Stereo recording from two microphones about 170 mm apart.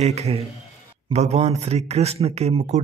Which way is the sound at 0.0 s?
40° right (ahead or behind).